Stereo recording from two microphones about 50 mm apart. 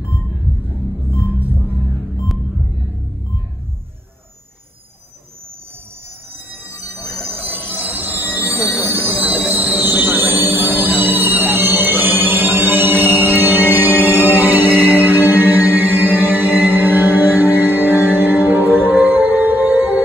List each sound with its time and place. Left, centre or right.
6.6 s train wheels squealing: right